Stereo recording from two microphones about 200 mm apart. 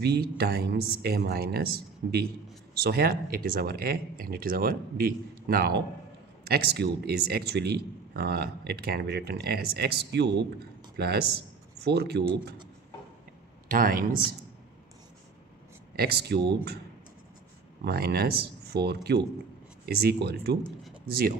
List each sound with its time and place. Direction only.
0.0 s a man's voice: 55° right (ahead or behind)
13.7 s speech: 45° right (ahead or behind)
16.0 s a man's voice: 55° right (ahead or behind)
17.8 s a man's voice: 50° right (ahead or behind)